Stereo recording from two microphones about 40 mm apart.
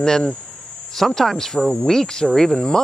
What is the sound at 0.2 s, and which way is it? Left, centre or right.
Cricket, left.